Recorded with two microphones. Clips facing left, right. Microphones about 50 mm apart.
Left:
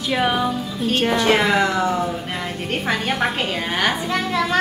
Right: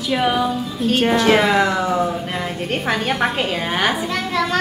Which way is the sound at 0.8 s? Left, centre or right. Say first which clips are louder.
Right 3 dB; centre.